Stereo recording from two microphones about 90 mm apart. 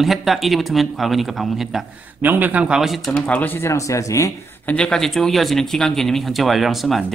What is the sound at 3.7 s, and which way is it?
Speech, 35° left (ahead or behind).